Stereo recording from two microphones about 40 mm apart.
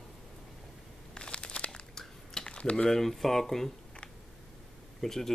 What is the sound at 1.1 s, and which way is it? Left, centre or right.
Crumpling, left.